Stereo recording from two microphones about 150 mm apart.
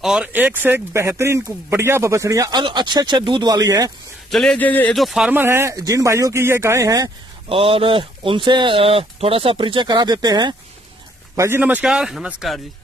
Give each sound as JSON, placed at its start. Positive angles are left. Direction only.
{"t": 0.0, "sound": "speech", "side_deg": -5}
{"t": 4.3, "sound": "speech", "side_deg": 5}
{"t": 4.9, "sound": "speech", "side_deg": 0}
{"t": 7.4, "sound": "speech", "side_deg": -40}
{"t": 11.3, "sound": "a man's voice", "side_deg": -15}